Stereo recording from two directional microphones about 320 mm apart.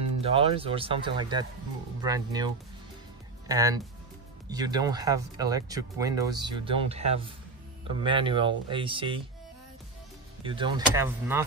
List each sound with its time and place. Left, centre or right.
0.2 s speech: centre
10.4 s speech: centre